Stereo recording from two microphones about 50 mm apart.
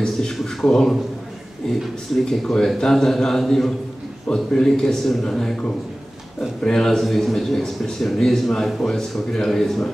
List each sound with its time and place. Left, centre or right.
0.0 s a sound: centre
2.1 s a man's voice: centre
6.6 s a man's voice: centre